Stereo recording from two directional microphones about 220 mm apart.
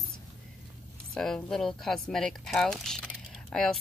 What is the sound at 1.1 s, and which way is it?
Speech, centre (ahead or behind).